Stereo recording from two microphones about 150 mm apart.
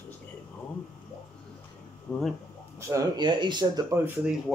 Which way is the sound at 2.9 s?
30° right (ahead or behind).